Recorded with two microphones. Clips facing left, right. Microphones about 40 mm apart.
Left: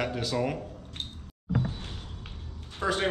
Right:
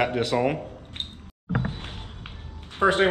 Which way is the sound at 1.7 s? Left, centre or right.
Right.